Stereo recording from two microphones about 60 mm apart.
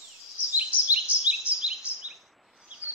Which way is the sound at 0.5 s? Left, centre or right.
Right.